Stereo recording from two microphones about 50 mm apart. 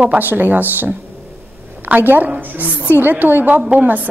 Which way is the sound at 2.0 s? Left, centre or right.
Right.